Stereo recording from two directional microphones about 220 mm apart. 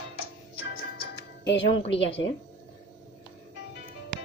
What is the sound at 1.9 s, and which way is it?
Speech, 55° left (ahead or behind).